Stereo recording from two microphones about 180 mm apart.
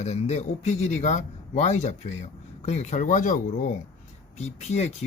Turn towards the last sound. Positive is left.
turn(degrees=40)  # may be behind; listen again after turning